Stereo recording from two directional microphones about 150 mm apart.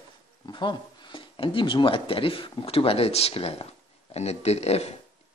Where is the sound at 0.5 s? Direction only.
30° left (ahead or behind).